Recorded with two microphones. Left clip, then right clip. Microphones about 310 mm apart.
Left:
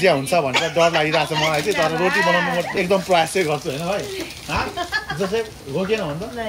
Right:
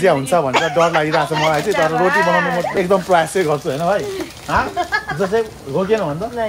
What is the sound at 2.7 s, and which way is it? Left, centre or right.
Speech, centre.